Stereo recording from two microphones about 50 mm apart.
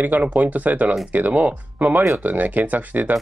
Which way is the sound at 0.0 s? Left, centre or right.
Right.